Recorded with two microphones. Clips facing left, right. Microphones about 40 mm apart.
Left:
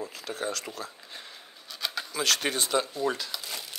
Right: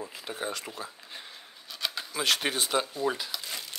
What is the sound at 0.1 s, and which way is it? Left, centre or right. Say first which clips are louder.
Speech: left 2 dB; centre.